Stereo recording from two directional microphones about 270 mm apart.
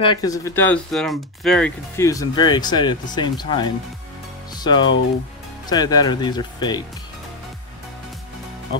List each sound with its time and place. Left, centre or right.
0.0 s speech: centre